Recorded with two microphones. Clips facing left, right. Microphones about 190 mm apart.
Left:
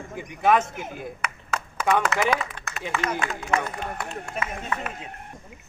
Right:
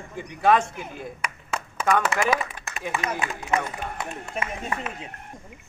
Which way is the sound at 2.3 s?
10° right (ahead or behind).